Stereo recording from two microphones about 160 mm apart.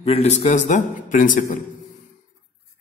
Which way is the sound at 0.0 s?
40° left (ahead or behind).